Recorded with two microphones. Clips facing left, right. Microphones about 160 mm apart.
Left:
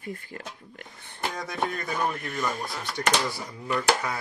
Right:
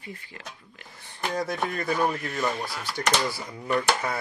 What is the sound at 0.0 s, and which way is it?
Speech, 45° left (ahead or behind).